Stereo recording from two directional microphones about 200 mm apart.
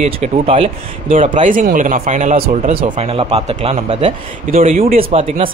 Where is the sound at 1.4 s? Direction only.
40° right (ahead or behind).